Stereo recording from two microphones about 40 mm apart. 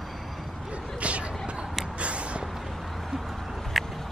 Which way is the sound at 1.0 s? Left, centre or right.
Right.